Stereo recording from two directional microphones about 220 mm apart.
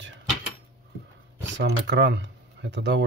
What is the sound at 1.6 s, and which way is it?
Speech, 55° right (ahead or behind).